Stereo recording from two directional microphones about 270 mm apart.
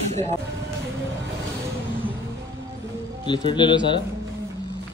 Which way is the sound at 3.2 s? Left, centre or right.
Centre.